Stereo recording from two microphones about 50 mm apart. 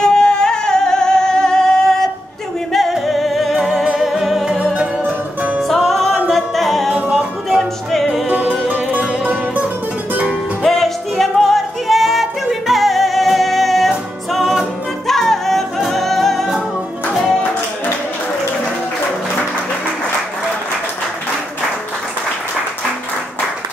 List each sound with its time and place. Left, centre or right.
0.0 s music: centre
3.8 s music: centre
4.6 s music: right
5.9 s music: centre
6.3 s a capella: centre
7.0 s music: right
7.4 s music: centre
8.5 s music: right
10.6 s music: centre